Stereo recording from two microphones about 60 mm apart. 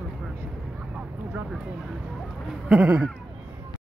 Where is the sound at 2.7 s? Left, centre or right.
Right.